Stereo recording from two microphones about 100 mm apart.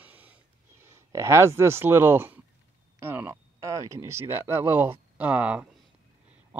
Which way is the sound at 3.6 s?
30° right (ahead or behind).